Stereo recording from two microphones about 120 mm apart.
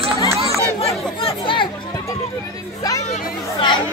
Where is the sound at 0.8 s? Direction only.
50° left (ahead or behind).